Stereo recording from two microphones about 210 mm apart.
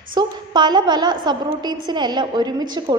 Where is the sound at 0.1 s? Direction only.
20° right (ahead or behind).